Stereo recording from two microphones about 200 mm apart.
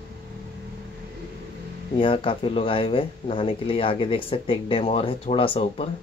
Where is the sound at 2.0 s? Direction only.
25° left (ahead or behind).